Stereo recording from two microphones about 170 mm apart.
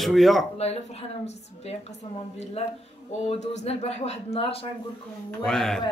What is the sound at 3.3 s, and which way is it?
Speech, 40° left (ahead or behind).